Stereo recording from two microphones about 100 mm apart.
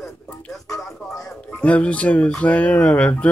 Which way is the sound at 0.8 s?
5° left (ahead or behind).